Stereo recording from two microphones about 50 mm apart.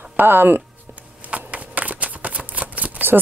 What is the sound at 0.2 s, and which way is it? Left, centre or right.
Speech, right.